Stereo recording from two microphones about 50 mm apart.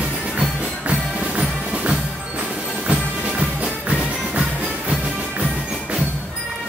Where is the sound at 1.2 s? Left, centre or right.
Right.